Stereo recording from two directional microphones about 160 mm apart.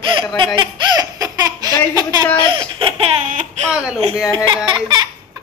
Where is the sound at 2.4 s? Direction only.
30° right (ahead or behind).